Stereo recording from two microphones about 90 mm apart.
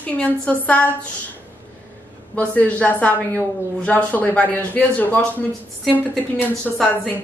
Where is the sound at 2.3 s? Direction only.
15° left (ahead or behind).